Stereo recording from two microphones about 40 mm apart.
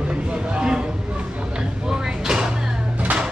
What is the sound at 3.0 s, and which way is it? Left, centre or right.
Music, right.